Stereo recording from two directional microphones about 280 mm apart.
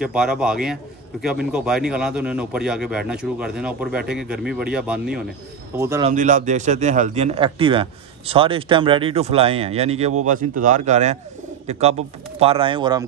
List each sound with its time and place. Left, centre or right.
0.0 s a man's voice: centre
6.0 s speech: right